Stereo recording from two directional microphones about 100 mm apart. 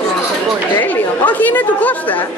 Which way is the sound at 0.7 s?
15° left (ahead or behind).